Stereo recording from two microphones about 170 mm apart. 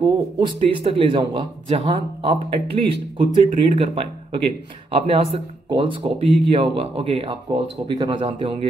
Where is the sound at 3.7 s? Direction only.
35° right (ahead or behind).